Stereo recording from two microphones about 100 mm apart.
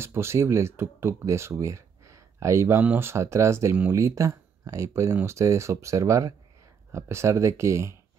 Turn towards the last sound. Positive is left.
turn(degrees=-30)  # may be behind; listen again after turning